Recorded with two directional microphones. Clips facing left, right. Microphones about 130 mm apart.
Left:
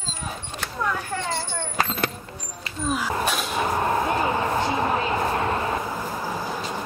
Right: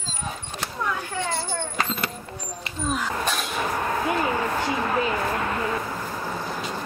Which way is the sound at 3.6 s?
25° left (ahead or behind).